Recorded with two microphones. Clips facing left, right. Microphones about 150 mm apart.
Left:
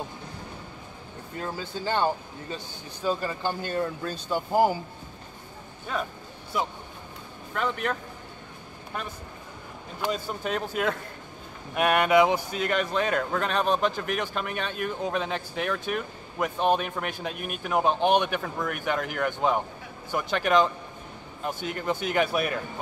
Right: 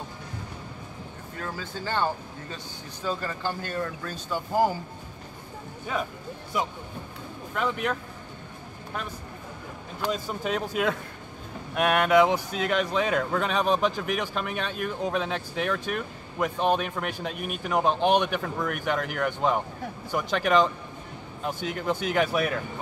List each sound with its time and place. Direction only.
1.4 s speech: 20° left (ahead or behind)
7.5 s speech: centre (ahead or behind)
10.0 s speech: centre (ahead or behind)